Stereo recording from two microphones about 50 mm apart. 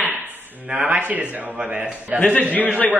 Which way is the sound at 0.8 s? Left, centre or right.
Right.